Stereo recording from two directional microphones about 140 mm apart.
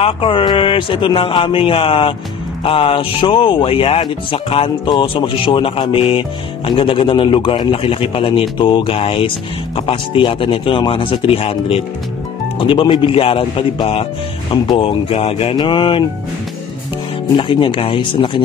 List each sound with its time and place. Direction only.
0.0 s speech: 40° left (ahead or behind)
17.4 s speech: 40° left (ahead or behind)